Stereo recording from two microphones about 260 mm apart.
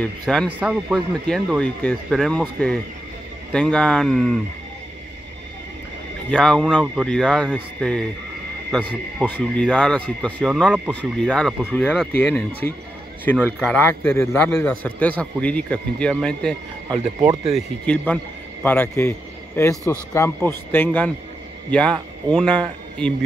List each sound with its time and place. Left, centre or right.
0.0 s speech: centre
6.3 s speech: centre
16.9 s speech: centre
17.6 s a man's voice: centre